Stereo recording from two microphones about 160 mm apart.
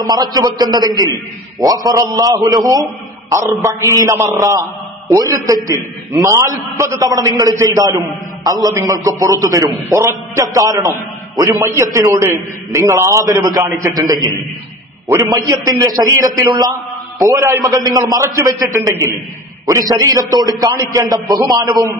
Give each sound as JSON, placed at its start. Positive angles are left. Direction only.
{"t": 0.1, "sound": "a man's voice", "side_deg": -25}